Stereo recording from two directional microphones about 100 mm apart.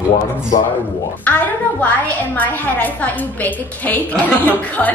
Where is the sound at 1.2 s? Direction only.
15° left (ahead or behind).